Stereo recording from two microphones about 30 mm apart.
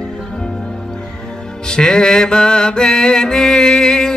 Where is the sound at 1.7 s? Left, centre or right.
Left.